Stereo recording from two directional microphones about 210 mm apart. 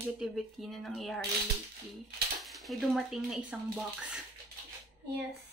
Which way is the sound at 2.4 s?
Centre (ahead or behind).